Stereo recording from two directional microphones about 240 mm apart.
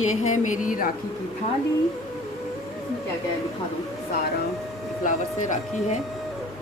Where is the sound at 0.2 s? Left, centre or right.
Left.